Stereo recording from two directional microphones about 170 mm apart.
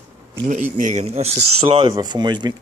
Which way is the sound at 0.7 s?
45° right (ahead or behind).